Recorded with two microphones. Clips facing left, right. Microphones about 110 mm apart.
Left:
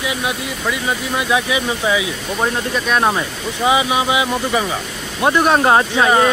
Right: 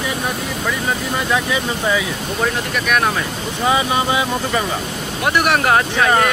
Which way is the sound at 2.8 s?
25° left (ahead or behind).